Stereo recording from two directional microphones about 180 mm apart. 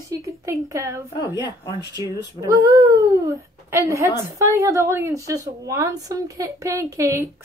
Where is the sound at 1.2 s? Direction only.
25° left (ahead or behind).